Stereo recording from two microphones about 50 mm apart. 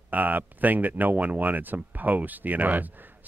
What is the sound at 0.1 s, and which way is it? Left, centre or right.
Speech, right.